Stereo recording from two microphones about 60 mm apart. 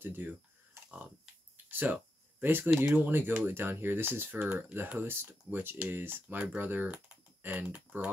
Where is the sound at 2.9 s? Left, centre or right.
Right.